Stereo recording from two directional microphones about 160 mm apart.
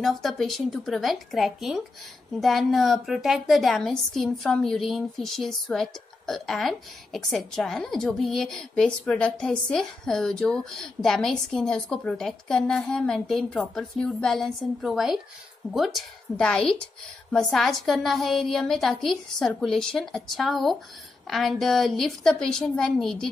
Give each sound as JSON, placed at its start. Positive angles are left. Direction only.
{"t": 0.0, "sound": "a woman's voice", "side_deg": 0}